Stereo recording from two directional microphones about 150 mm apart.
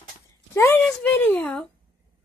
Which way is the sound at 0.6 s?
15° left (ahead or behind).